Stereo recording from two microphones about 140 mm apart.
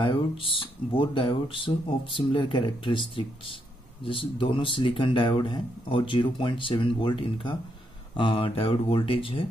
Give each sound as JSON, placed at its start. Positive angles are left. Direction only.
{"t": 0.6, "sound": "speech", "side_deg": 40}